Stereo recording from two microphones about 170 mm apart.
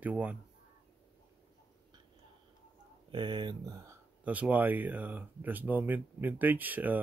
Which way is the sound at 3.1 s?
25° right (ahead or behind).